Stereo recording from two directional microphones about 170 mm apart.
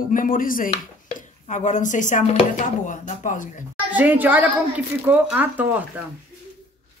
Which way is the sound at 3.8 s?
10° right (ahead or behind).